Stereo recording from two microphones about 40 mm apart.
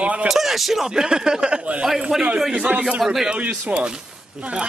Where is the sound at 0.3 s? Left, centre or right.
Centre.